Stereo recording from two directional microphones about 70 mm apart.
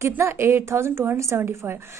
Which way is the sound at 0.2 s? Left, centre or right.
Right.